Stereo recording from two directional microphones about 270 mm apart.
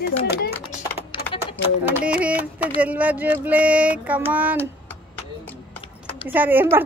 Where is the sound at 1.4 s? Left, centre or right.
Centre.